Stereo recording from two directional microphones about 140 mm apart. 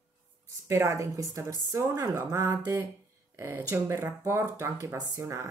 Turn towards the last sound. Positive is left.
turn(degrees=-20)  # may be behind; listen again after turning